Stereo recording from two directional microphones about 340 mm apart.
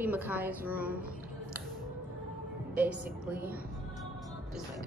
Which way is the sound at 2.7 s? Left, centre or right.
Centre.